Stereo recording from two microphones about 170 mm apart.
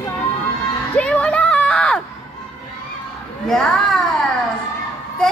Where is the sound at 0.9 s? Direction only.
10° left (ahead or behind).